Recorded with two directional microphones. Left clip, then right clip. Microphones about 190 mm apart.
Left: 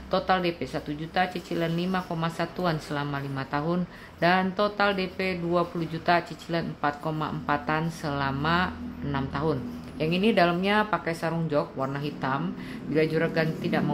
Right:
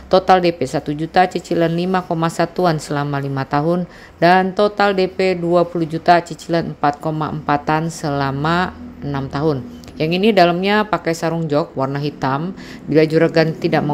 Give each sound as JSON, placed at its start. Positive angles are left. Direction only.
{"t": 0.1, "sound": "a woman's voice", "side_deg": -40}